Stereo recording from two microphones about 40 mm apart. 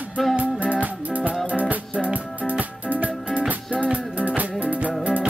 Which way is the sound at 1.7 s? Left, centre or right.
Right.